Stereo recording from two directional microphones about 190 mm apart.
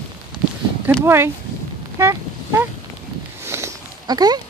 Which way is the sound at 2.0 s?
15° right (ahead or behind).